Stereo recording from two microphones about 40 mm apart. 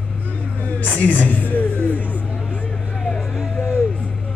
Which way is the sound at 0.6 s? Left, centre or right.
Left.